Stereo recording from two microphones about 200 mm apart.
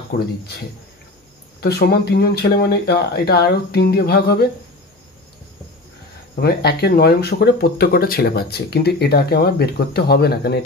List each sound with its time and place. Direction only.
0.1 s speech: 45° left (ahead or behind)
1.6 s speech: 50° left (ahead or behind)
6.4 s speech: 55° left (ahead or behind)